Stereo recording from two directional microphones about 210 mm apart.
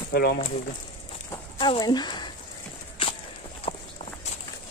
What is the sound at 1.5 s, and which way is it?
Speech, 25° left (ahead or behind).